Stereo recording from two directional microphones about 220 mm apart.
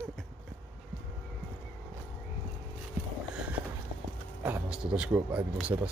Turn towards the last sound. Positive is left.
turn(degrees=-5)  # may be behind; listen again after turning